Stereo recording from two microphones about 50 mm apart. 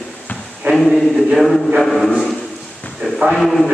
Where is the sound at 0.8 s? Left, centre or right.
Centre.